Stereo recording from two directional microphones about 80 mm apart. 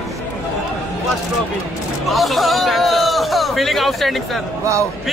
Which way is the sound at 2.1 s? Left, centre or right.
Centre.